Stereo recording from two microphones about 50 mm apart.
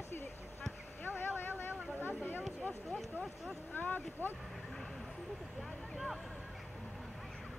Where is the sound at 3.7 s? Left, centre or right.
Left.